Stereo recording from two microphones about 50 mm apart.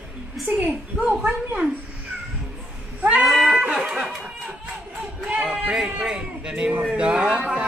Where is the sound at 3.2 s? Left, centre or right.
Centre.